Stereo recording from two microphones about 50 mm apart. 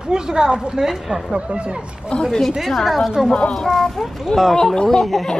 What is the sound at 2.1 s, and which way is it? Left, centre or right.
Speech, centre.